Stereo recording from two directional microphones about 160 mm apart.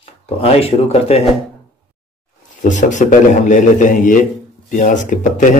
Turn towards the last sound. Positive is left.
turn(degrees=50)  # may be behind; listen again after turning